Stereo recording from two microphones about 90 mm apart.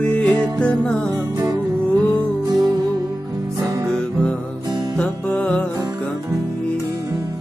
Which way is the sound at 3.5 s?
35° right (ahead or behind).